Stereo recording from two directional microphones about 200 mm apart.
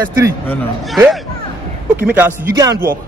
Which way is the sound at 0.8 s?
Centre (ahead or behind).